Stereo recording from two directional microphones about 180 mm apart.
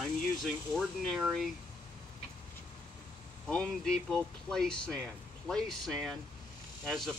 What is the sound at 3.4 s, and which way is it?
Speech, 5° left (ahead or behind).